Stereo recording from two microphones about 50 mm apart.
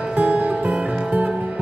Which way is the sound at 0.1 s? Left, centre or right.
Right.